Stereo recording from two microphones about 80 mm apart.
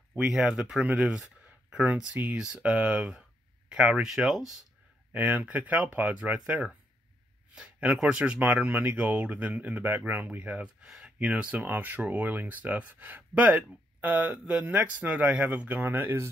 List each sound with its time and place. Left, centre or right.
0.2 s speech: centre
2.1 s speech: centre
5.1 s speech: right